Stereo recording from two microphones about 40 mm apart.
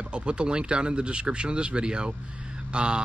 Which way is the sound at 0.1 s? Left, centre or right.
Right.